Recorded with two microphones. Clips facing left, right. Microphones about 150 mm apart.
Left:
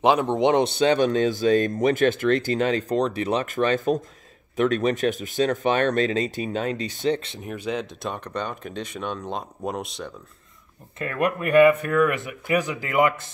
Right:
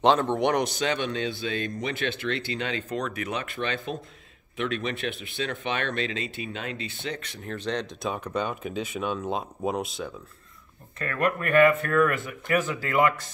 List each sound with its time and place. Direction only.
0.0 s speech: 10° left (ahead or behind)
7.4 s speech: 10° left (ahead or behind)
11.0 s speech: 15° left (ahead or behind)